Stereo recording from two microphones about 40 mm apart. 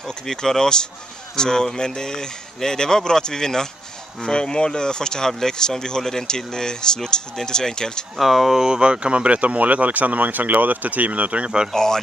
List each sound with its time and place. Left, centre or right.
0.3 s speech: centre
8.2 s speech: centre
8.6 s speech: centre
11.7 s speech: centre